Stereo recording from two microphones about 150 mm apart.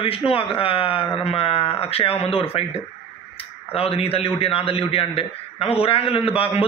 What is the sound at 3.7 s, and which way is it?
A man's voice, 40° left (ahead or behind).